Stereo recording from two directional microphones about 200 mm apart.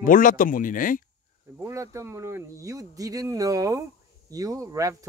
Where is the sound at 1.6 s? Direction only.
15° right (ahead or behind).